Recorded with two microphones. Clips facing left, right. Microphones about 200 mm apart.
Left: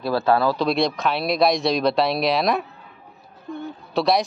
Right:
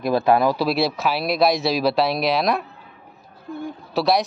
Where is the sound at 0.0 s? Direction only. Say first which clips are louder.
Right 2 dB; 15° right (ahead or behind).